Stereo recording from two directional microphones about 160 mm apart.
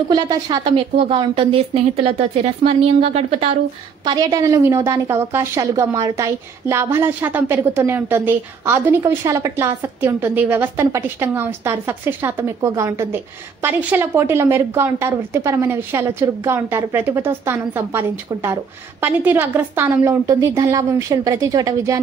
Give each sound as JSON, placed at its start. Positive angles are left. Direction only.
{"t": 0.1, "sound": "a woman's voice", "side_deg": -25}
{"t": 4.0, "sound": "a woman's voice", "side_deg": -25}